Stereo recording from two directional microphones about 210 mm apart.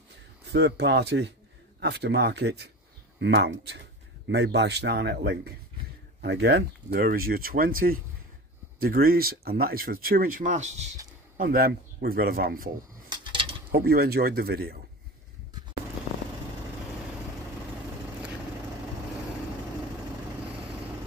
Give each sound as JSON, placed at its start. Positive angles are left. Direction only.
{"t": 0.5, "sound": "speech", "side_deg": -55}
{"t": 13.1, "sound": "a sound", "side_deg": -25}
{"t": 13.7, "sound": "speech", "side_deg": -45}